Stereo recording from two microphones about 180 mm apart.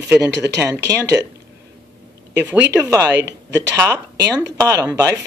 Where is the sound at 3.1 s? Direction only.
75° right (ahead or behind).